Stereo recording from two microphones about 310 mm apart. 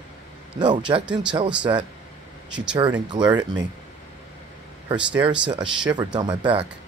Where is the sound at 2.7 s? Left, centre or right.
Centre.